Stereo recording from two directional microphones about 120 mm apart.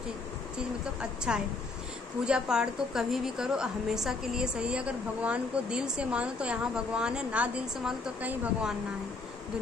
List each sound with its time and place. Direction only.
1.3 s a woman's voice: 10° right (ahead or behind)